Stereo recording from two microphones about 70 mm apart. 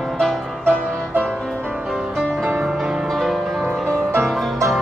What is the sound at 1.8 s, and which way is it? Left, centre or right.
Music, centre.